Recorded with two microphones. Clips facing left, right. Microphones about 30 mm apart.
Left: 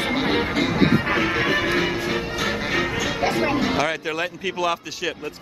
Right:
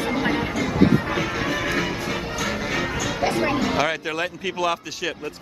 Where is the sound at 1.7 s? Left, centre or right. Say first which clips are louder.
Left 2 dB; left.